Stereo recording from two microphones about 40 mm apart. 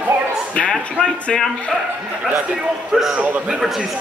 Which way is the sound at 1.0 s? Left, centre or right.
Left.